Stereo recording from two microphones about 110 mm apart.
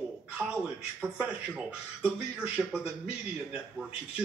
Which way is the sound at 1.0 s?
10° right (ahead or behind).